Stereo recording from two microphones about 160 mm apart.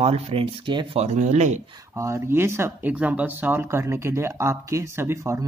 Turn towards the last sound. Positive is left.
turn(degrees=-15)  # may be behind; listen again after turning